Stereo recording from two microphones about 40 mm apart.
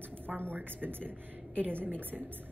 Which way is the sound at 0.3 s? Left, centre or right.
Right.